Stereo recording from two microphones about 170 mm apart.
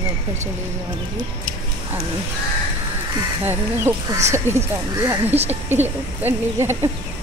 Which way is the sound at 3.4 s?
15° right (ahead or behind).